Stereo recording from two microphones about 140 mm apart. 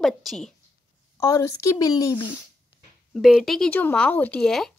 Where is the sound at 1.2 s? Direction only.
25° left (ahead or behind).